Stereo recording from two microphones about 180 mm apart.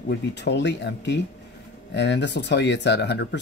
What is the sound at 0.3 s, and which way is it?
Speech, 70° left (ahead or behind).